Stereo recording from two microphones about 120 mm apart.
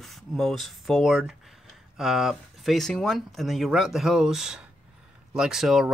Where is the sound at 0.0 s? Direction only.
Centre (ahead or behind).